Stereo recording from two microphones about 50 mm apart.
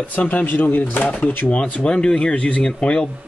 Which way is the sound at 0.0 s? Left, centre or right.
Left.